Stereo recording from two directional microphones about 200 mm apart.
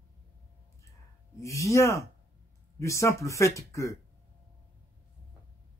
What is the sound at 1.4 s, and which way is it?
Speech, 15° left (ahead or behind).